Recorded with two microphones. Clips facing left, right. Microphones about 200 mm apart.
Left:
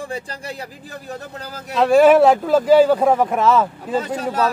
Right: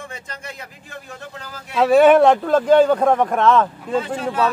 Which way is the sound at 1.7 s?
Centre (ahead or behind).